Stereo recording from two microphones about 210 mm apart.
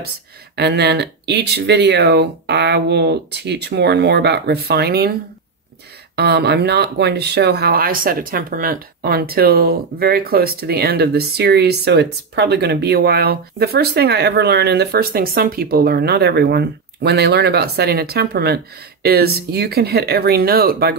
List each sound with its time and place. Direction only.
0.6 s speech: 50° right (ahead or behind)
6.1 s speech: 50° right (ahead or behind)